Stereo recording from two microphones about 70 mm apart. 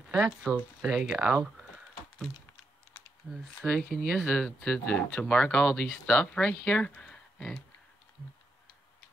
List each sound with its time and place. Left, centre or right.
0.1 s speech: centre
3.3 s speech: centre
3.7 s speech: centre
4.5 s speech: left